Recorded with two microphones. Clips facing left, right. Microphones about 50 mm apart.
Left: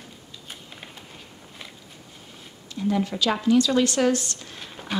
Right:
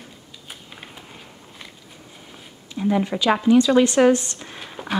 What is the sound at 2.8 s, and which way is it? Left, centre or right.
Speech, right.